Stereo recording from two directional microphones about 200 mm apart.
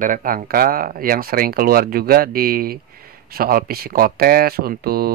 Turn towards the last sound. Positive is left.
turn(degrees=-50)  # may be behind; listen again after turning